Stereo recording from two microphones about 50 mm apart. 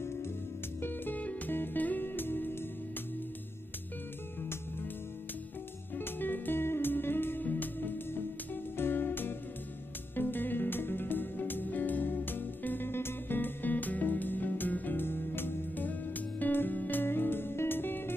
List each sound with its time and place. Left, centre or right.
0.7 s music: left
5.9 s music: left